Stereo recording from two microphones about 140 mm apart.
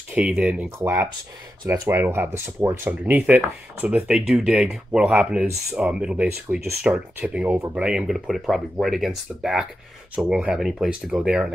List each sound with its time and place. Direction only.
0.1 s speech: 10° right (ahead or behind)